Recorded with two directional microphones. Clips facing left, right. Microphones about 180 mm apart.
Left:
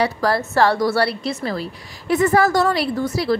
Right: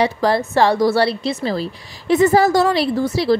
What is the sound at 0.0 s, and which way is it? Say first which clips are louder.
A woman's voice: right 3 dB; 20° right (ahead or behind).